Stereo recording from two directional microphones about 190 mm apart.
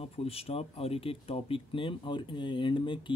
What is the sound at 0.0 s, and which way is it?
Speech, 30° left (ahead or behind).